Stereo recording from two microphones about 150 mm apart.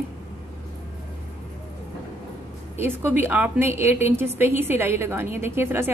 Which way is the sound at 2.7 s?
15° right (ahead or behind).